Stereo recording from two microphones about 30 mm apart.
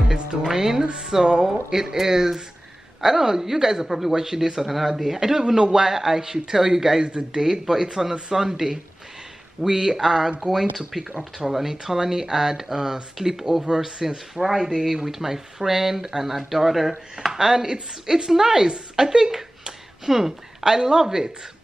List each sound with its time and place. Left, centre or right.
0.1 s a man's voice: right
4.6 s a man's voice: centre